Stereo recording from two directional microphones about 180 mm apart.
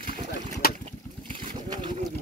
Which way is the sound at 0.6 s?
55° left (ahead or behind).